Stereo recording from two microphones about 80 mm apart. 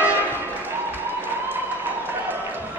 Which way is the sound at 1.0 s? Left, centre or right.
Right.